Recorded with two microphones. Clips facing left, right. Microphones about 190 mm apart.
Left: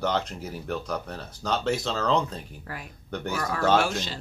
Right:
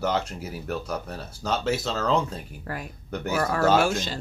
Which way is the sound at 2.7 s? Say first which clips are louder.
Right 3 dB; 45° right (ahead or behind).